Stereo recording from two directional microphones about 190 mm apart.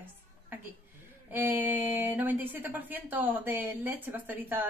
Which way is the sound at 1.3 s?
10° right (ahead or behind).